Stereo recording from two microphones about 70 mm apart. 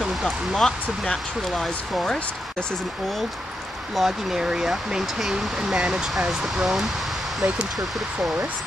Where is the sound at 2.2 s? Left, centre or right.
Centre.